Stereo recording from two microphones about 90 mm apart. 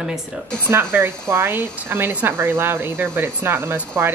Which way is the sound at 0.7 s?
25° right (ahead or behind).